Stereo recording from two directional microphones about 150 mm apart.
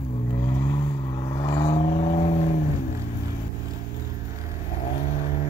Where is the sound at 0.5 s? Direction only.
30° left (ahead or behind); by 2.6 s 50° left (ahead or behind).